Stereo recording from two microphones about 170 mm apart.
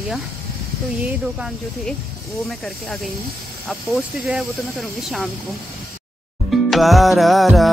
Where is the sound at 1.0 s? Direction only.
5° right (ahead or behind).